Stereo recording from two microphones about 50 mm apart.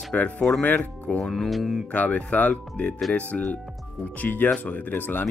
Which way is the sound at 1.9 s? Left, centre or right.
Left.